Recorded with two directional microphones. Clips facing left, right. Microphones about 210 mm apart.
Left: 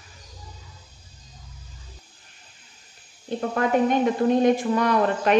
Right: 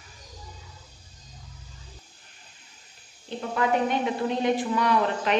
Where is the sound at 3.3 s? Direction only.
50° left (ahead or behind).